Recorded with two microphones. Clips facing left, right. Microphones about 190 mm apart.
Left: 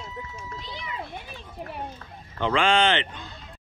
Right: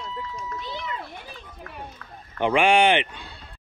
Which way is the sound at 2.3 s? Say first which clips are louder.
Right 3 dB; 15° right (ahead or behind).